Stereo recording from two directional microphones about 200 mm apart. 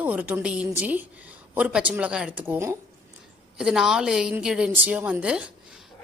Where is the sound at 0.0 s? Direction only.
10° right (ahead or behind).